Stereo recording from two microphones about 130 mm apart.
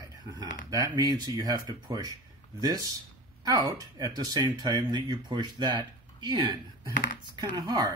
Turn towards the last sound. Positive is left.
turn(degrees=-35)  # may be behind; listen again after turning